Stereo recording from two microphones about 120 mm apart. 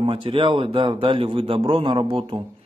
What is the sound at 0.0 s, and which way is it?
Speech, 45° right (ahead or behind).